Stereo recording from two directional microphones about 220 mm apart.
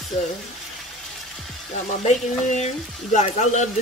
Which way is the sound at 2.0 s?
35° left (ahead or behind).